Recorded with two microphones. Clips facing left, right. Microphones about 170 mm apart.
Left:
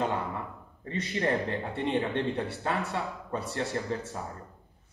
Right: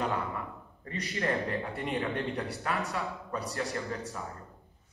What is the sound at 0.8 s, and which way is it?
Speech, 20° left (ahead or behind).